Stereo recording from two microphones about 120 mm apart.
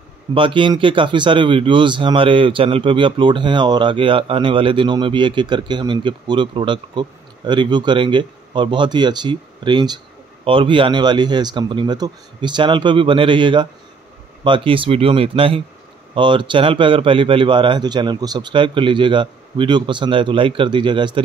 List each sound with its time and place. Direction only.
0.3 s speech: 45° right (ahead or behind)